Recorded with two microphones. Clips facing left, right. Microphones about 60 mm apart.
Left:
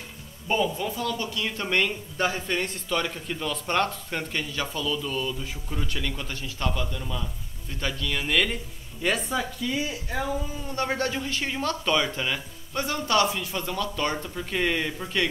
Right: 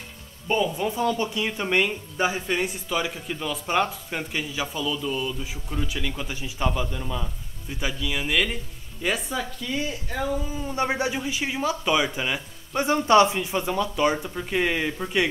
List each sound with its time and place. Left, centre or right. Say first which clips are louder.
0.7 s speech: right 5 dB; centre
10.5 s speech: right 3 dB; centre
12.8 s speech: right 6 dB; right